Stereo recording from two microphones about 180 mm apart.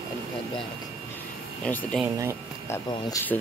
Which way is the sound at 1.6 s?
5° left (ahead or behind).